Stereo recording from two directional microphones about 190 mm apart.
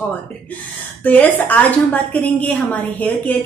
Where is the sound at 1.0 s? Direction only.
10° left (ahead or behind).